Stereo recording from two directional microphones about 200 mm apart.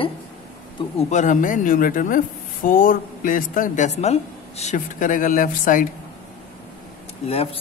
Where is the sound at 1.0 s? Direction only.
35° left (ahead or behind).